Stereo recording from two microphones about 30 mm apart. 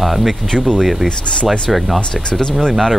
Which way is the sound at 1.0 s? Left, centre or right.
Left.